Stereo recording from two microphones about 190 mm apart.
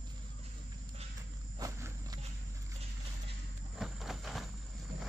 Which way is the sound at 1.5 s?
15° right (ahead or behind).